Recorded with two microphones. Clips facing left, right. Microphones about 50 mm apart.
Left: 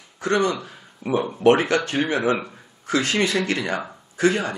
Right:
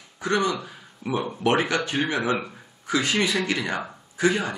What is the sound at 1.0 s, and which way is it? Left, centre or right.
Speech, centre.